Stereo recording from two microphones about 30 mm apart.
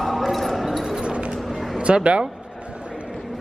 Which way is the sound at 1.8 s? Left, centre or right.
Right.